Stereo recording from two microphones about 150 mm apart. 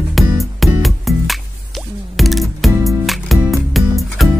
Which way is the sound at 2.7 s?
20° right (ahead or behind).